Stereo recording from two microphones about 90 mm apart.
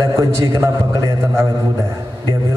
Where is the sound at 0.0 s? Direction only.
40° right (ahead or behind).